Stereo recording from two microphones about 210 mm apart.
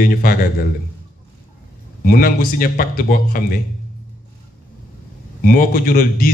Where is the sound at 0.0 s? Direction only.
45° left (ahead or behind).